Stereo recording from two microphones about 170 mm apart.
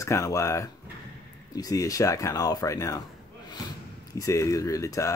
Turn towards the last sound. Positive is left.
turn(degrees=20)  # may be behind; listen again after turning